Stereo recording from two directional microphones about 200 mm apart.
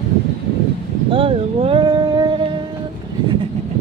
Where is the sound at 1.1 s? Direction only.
25° right (ahead or behind).